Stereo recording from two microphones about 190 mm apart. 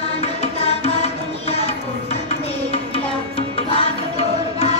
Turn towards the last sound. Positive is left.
turn(degrees=30)  # may be behind; listen again after turning